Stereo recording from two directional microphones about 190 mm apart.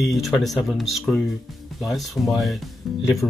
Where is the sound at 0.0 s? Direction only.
Centre (ahead or behind).